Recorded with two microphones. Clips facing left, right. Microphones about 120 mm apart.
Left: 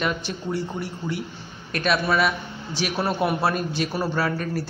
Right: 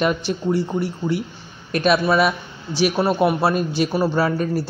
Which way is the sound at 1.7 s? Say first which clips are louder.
Right 5 dB; 20° right (ahead or behind).